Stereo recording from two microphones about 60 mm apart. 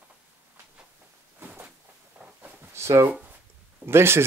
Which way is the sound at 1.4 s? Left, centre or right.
Right.